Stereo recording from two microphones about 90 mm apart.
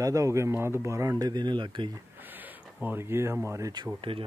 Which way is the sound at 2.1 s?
20° right (ahead or behind).